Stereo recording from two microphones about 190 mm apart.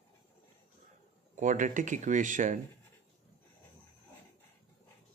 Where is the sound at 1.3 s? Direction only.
40° right (ahead or behind).